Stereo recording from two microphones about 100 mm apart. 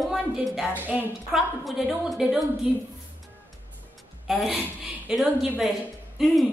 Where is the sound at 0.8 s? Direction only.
20° right (ahead or behind).